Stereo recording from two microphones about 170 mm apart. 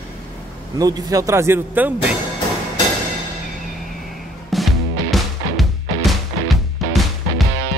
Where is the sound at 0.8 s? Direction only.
20° right (ahead or behind).